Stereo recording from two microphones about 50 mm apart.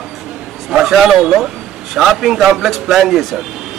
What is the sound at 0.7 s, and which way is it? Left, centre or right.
A man's voice, centre.